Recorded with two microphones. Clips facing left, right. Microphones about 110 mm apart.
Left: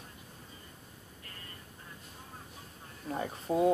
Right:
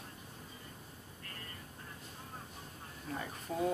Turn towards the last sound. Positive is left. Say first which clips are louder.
# left 7 dB
turn(degrees=30)  # may be behind; listen again after turning